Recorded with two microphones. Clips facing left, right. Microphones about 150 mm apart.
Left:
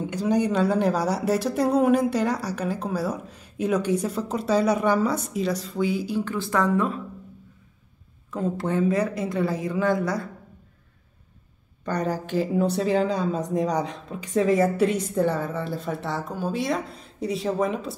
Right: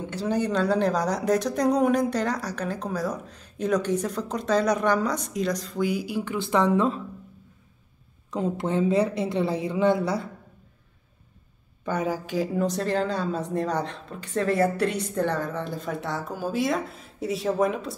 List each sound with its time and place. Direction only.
0.1 s speech: 10° left (ahead or behind)
6.1 s speech: 15° right (ahead or behind)
8.3 s speech: 20° right (ahead or behind)
11.8 s speech: 5° right (ahead or behind)